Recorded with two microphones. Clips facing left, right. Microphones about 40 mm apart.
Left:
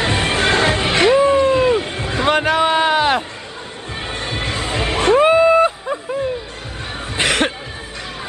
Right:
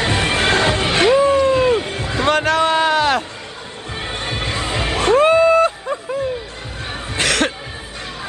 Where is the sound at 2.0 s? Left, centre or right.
Centre.